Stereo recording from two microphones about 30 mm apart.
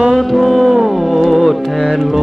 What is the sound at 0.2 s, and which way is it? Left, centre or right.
Music, centre.